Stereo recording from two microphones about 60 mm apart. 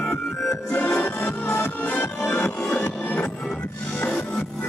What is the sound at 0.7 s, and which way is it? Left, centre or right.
Music, centre.